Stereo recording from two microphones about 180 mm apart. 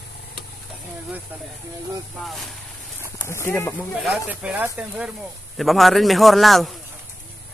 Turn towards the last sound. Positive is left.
turn(degrees=0)  # may be behind; listen again after turning